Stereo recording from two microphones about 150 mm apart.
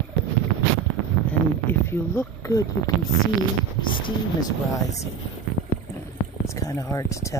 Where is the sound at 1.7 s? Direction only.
15° left (ahead or behind).